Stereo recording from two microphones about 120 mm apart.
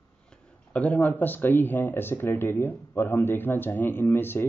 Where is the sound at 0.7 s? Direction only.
15° left (ahead or behind).